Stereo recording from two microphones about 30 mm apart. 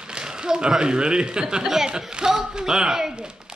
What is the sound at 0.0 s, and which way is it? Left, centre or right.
Speech, right.